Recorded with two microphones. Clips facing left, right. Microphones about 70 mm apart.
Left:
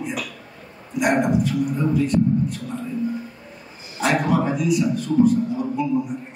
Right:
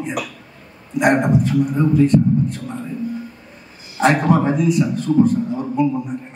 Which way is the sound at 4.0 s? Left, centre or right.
Right.